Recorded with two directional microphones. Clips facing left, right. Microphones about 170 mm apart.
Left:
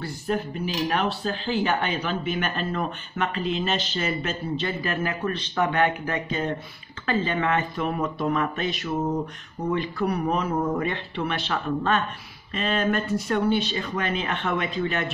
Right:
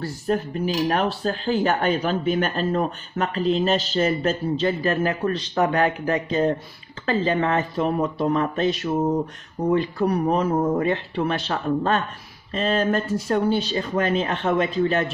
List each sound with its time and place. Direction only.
0.0 s cutlery: 40° right (ahead or behind)